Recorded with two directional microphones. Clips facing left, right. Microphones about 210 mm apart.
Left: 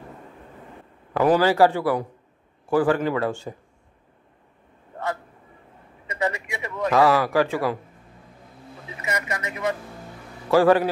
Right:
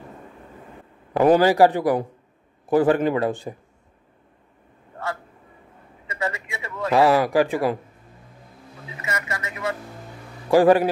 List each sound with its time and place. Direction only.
1.1 s a man's voice: 20° right (ahead or behind)
6.0 s a sound: 20° left (ahead or behind)
6.9 s a man's voice: 15° right (ahead or behind)
9.0 s speech: 20° left (ahead or behind)
10.5 s a man's voice: 15° right (ahead or behind)